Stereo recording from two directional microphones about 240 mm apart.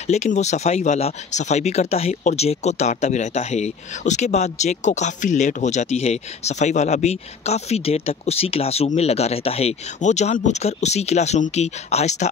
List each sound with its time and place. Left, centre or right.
0.0 s speech: left